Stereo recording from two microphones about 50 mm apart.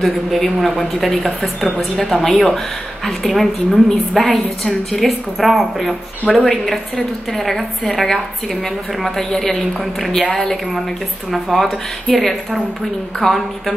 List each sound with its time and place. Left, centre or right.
0.0 s speech: centre
6.2 s speech: left
6.5 s speech: centre